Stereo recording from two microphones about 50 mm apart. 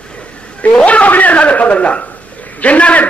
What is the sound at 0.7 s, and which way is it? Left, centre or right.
A man's voice, left.